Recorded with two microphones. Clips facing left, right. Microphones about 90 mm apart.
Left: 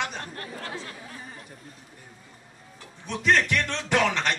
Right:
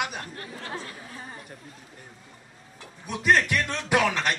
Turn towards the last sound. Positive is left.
turn(degrees=-10)  # may be behind; listen again after turning